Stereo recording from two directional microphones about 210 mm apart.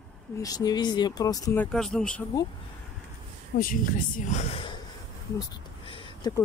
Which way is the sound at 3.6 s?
40° left (ahead or behind).